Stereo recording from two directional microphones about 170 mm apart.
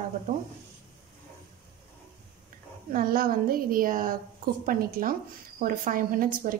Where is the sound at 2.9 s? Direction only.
55° right (ahead or behind).